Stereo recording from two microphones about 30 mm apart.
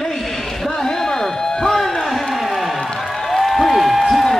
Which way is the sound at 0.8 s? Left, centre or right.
Centre.